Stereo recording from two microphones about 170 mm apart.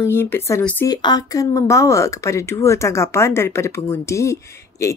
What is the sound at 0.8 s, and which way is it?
Speech, 25° left (ahead or behind).